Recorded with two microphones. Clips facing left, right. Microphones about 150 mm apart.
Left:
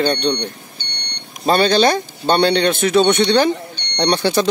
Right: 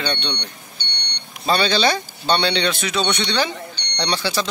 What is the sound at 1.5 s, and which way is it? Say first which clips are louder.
Speech: left 5 dB; 50° left (ahead or behind).